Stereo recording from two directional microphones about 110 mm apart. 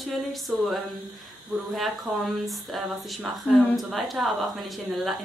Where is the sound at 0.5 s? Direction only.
5° right (ahead or behind).